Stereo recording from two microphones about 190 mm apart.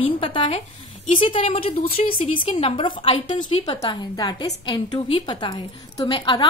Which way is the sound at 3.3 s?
35° left (ahead or behind).